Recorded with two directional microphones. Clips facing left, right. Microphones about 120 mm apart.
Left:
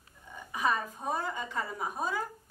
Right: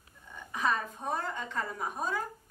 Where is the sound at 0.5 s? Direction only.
10° left (ahead or behind).